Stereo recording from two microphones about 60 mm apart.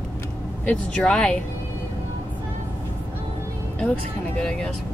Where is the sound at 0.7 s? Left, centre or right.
Centre.